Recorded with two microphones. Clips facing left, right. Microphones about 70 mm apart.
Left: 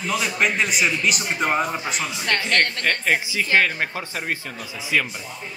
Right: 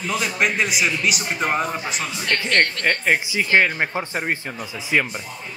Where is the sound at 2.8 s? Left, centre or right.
Centre.